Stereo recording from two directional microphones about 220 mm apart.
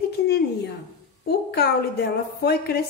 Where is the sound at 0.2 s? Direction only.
50° left (ahead or behind).